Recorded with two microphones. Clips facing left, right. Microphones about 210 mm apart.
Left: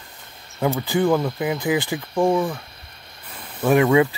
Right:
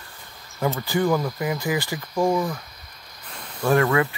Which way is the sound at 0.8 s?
25° left (ahead or behind).